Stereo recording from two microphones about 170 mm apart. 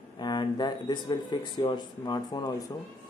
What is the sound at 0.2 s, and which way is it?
Speech, 25° left (ahead or behind).